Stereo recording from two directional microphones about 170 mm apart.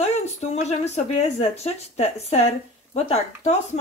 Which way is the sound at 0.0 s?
40° left (ahead or behind).